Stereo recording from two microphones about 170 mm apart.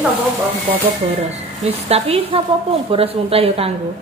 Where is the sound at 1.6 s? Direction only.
35° right (ahead or behind).